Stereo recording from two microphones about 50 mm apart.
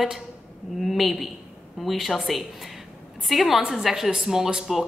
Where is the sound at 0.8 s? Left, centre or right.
Centre.